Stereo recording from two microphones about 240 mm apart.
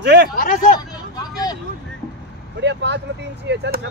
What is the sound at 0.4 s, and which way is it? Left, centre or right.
Hubbub, left.